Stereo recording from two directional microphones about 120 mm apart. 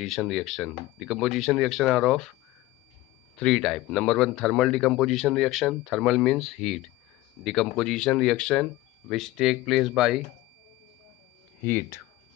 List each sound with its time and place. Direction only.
0.0 s a man's voice: centre (ahead or behind)
3.3 s a man's voice: 5° left (ahead or behind)
11.6 s speech: 15° left (ahead or behind)